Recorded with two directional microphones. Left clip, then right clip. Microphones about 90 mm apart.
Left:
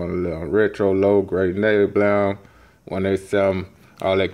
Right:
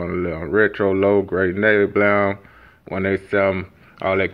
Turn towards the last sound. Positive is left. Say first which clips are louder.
# even
turn(degrees=45)  # may be behind; listen again after turning